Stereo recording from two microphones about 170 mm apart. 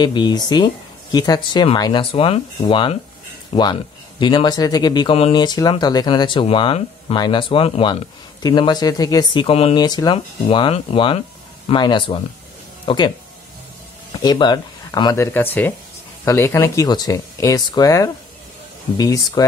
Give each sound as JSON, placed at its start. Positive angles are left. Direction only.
{"t": 0.0, "sound": "speech", "side_deg": 25}
{"t": 9.8, "sound": "speech", "side_deg": 25}
{"t": 14.2, "sound": "speech", "side_deg": 25}